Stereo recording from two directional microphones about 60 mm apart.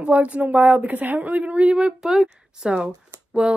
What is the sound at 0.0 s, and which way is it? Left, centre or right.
A woman's voice, right.